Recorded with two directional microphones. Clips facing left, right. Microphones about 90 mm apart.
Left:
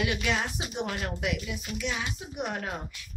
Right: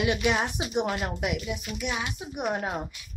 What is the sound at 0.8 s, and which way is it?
Speech, 35° right (ahead or behind).